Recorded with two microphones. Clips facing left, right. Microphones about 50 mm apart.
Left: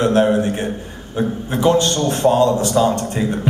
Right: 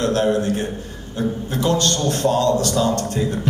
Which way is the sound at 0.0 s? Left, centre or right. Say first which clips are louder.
Left 4 dB; left.